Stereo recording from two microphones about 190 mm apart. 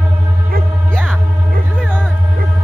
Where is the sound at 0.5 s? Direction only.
50° right (ahead or behind).